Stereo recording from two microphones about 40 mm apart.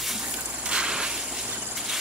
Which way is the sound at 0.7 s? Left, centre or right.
Right.